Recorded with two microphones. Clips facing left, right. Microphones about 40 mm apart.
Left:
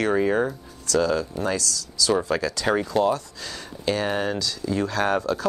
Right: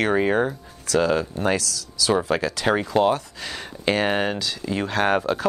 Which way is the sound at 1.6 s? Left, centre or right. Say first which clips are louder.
Left 1 dB; left.